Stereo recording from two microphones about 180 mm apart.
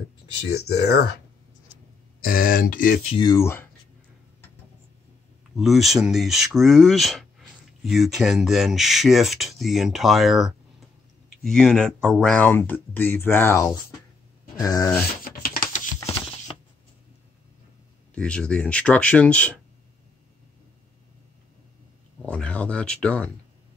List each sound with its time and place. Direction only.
0.5 s speech: 65° left (ahead or behind)
2.2 s speech: 55° left (ahead or behind)
3.2 s speech: 20° left (ahead or behind)
5.6 s speech: centre (ahead or behind); by 14.9 s 20° left (ahead or behind)
15.2 s typing: 55° left (ahead or behind)
16.0 s a sound: 15° left (ahead or behind)
18.1 s speech: 5° left (ahead or behind)
22.2 s speech: 10° left (ahead or behind)